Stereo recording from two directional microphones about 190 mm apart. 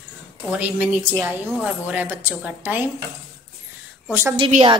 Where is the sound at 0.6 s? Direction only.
10° right (ahead or behind).